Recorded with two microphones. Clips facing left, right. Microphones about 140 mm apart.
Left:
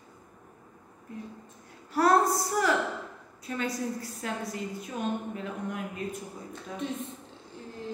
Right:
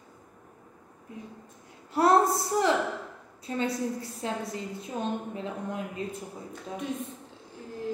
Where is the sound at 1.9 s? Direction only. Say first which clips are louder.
Right 1 dB; 25° right (ahead or behind).